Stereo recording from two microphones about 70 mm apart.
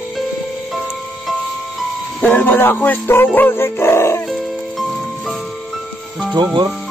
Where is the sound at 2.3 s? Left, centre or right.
Left.